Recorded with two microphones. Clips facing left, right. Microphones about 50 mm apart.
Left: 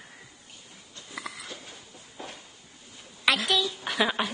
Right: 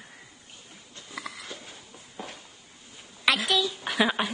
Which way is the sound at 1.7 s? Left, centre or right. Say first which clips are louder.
Even; centre.